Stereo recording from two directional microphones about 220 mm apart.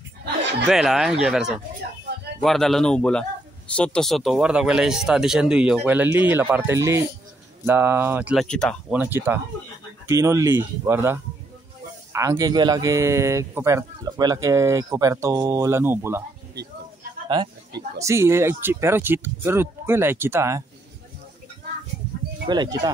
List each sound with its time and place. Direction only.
0.7 s speech: centre (ahead or behind)
9.0 s speech: 10° right (ahead or behind)
17.9 s speech: 15° right (ahead or behind)
22.5 s speech: 20° right (ahead or behind)